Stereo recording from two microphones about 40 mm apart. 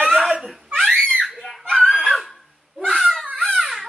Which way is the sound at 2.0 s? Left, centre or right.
Centre.